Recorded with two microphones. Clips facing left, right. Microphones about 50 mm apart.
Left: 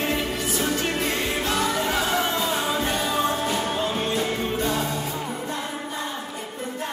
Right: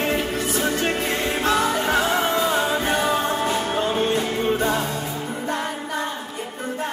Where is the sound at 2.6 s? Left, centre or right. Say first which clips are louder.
Right 4 dB; right.